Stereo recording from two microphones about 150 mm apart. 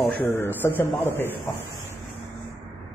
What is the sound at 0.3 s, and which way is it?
Speech, 15° left (ahead or behind).